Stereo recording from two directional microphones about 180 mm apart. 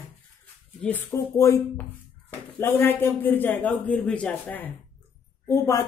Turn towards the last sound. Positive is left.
turn(degrees=15)  # may be behind; listen again after turning